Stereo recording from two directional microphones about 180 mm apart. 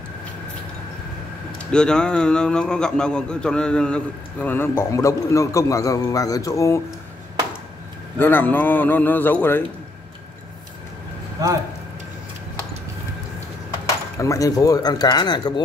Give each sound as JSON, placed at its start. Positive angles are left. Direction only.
{"t": 1.7, "sound": "a man's voice", "side_deg": 5}
{"t": 8.2, "sound": "a man's voice", "side_deg": 10}
{"t": 14.1, "sound": "speech", "side_deg": 15}